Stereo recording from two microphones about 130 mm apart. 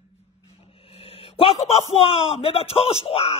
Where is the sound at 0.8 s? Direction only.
45° left (ahead or behind).